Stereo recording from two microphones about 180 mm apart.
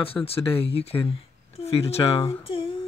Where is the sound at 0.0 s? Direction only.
30° left (ahead or behind).